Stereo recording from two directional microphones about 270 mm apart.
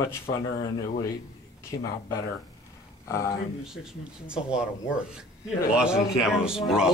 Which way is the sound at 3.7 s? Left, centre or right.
Centre.